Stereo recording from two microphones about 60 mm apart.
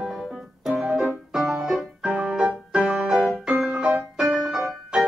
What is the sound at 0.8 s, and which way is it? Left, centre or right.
Piano, centre.